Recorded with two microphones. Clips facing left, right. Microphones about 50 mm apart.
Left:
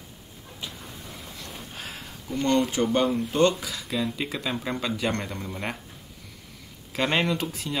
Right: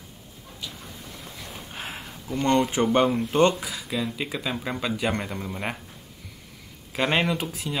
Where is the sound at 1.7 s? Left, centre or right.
Right.